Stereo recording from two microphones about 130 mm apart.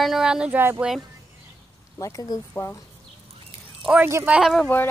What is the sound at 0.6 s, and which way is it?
Speech, 15° right (ahead or behind).